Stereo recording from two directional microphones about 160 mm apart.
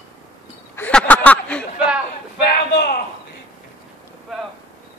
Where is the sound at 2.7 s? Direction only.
70° left (ahead or behind).